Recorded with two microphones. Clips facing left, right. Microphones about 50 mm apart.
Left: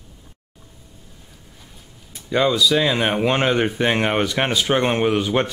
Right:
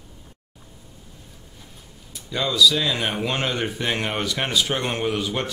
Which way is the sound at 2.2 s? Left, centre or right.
Left.